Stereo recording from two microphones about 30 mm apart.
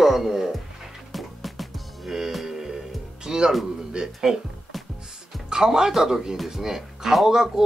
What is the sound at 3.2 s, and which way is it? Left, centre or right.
Speech, right.